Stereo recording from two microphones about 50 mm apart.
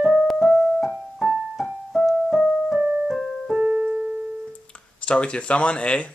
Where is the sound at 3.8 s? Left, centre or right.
Right.